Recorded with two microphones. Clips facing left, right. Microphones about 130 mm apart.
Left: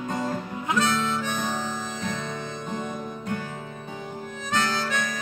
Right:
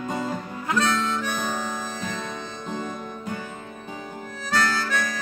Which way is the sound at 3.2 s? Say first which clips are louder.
Left 1 dB; 5° right (ahead or behind).